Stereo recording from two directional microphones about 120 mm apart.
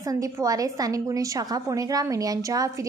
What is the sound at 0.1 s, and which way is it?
A woman's voice, 30° right (ahead or behind).